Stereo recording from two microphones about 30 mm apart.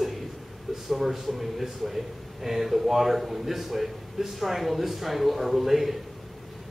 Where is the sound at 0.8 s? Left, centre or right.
Centre.